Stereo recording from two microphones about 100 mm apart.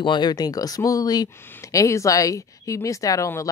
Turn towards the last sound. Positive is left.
turn(degrees=30)  # may be behind; listen again after turning